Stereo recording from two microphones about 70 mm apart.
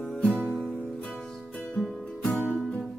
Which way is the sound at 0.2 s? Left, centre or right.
Centre.